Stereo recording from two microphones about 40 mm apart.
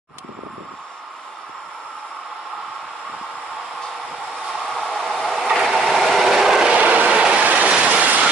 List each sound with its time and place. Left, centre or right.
4.6 s train: centre
6.7 s train: right
7.4 s train: right